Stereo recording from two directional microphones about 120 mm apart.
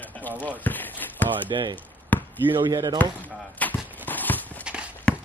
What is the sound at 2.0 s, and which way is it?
Basketball bounce, 15° left (ahead or behind).